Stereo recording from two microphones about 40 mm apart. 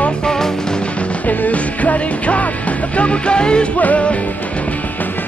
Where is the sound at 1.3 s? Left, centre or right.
Left.